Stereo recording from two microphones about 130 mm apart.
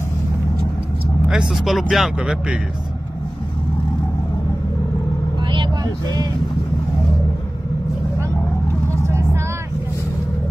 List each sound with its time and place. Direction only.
1.3 s speech: centre (ahead or behind)
9.0 s vehicle: 20° right (ahead or behind)